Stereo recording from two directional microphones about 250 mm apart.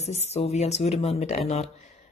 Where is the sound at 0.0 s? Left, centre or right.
Left.